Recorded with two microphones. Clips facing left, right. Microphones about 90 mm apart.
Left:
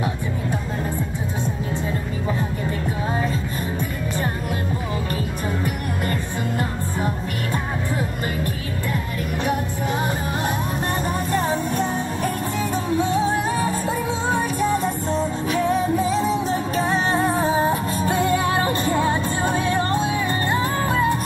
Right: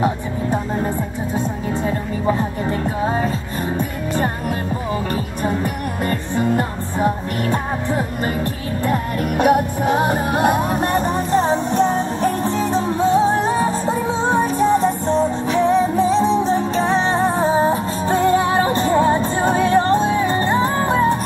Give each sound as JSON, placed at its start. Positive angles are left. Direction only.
{"t": 1.7, "sound": "music", "side_deg": -40}
{"t": 6.0, "sound": "music", "side_deg": -35}
{"t": 8.8, "sound": "music", "side_deg": -45}
{"t": 9.4, "sound": "music", "side_deg": -55}
{"t": 11.3, "sound": "music", "side_deg": -25}